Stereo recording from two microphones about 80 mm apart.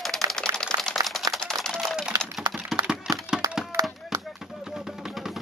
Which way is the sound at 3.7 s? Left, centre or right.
Right.